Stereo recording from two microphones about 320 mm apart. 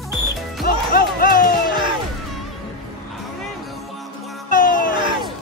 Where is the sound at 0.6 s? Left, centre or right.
Left.